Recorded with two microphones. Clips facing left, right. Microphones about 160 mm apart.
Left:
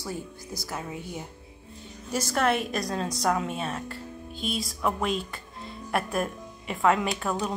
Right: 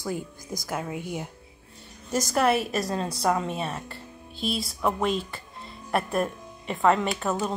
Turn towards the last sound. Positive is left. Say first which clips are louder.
# right 2 dB
turn(degrees=0)  # may be behind; listen again after turning